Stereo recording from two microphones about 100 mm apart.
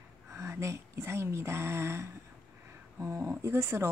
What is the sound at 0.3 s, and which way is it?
Speech, 30° right (ahead or behind).